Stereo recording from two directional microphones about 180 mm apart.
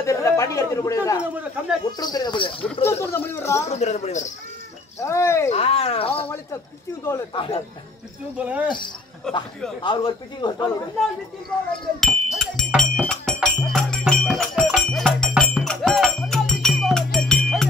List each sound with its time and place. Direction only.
0.0 s a man's voice: 15° left (ahead or behind)
2.8 s a man's voice: 15° left (ahead or behind)
3.6 s speech: 40° left (ahead or behind)
4.9 s a man's voice: 15° left (ahead or behind)
5.5 s speech: 35° left (ahead or behind)
7.3 s a man's voice: 30° left (ahead or behind)
8.4 s speech: 5° right (ahead or behind)
9.3 s speech: 5° left (ahead or behind)
9.8 s a man's voice: 25° left (ahead or behind)
12.0 s music: centre (ahead or behind)